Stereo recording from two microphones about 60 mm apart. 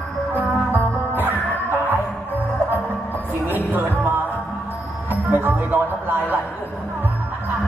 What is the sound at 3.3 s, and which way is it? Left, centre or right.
Music, right.